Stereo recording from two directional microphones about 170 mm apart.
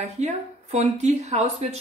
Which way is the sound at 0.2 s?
40° right (ahead or behind).